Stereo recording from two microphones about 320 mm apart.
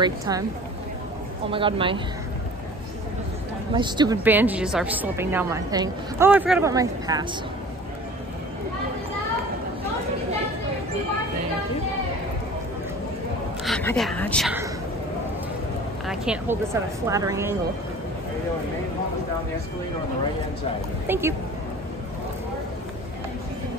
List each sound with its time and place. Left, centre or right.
0.3 s a woman's voice: centre
1.5 s a woman's voice: centre
3.7 s a woman's voice: centre
13.7 s a woman's voice: centre
16.1 s a woman's voice: centre
21.1 s a woman's voice: centre